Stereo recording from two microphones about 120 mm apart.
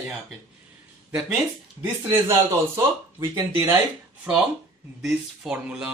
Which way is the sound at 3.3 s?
20° right (ahead or behind).